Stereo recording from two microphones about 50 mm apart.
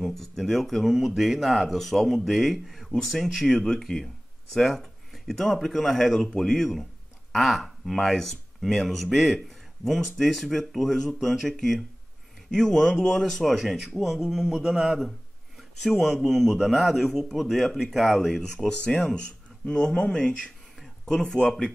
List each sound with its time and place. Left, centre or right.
0.0 s speech: centre
6.2 s speech: centre
6.5 s speech: centre
18.7 s speech: centre